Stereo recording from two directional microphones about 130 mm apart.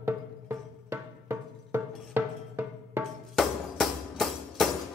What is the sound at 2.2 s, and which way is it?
Music, 15° right (ahead or behind).